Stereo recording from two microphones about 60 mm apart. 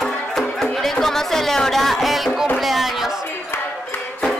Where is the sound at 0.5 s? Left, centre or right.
Centre.